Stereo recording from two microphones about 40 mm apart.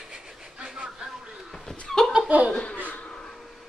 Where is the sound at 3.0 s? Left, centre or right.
Left.